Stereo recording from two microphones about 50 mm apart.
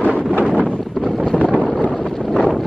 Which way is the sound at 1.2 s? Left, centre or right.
Left.